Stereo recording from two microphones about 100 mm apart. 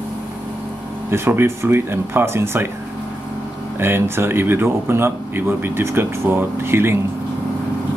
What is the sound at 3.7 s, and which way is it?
A man's voice, 25° right (ahead or behind).